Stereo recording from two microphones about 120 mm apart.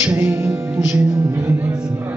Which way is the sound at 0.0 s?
10° right (ahead or behind).